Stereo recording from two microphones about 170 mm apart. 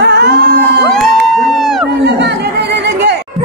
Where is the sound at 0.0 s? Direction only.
75° right (ahead or behind).